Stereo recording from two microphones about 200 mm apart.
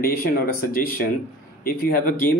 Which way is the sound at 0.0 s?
50° left (ahead or behind).